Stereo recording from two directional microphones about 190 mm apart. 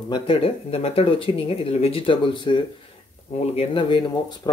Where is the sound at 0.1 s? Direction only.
30° left (ahead or behind).